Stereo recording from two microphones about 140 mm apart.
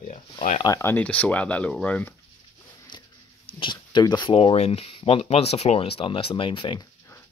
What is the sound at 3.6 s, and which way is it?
Speech, 35° left (ahead or behind).